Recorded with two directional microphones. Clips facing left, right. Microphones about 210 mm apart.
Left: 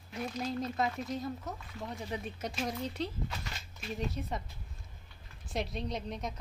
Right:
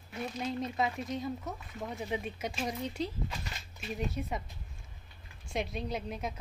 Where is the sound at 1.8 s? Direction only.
15° right (ahead or behind).